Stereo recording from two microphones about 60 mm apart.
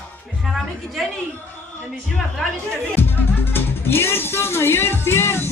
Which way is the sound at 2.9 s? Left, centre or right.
Left.